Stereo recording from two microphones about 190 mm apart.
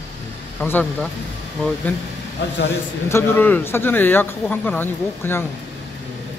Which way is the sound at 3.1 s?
10° left (ahead or behind).